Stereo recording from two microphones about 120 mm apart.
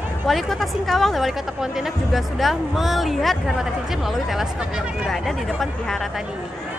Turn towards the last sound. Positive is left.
turn(degrees=0)  # may be behind; listen again after turning